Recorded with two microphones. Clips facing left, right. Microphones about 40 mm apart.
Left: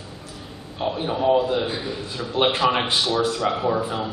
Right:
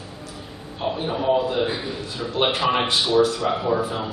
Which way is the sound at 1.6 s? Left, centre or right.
Centre.